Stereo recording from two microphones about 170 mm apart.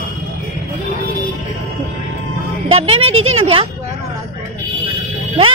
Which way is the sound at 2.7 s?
35° right (ahead or behind).